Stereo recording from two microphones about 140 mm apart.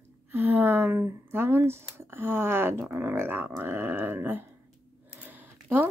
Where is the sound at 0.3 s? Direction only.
15° right (ahead or behind).